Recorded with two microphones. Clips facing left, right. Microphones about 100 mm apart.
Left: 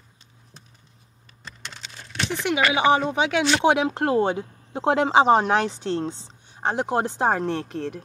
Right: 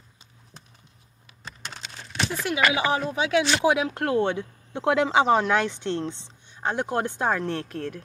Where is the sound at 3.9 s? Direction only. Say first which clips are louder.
Left 2 dB; 30° left (ahead or behind).